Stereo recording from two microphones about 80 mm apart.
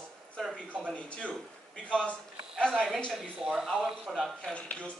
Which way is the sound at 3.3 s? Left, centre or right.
Centre.